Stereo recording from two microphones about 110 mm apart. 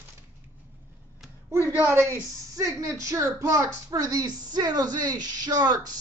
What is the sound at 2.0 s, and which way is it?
Speech, 30° right (ahead or behind).